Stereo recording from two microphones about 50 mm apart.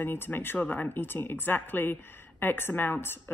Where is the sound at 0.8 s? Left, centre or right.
Left.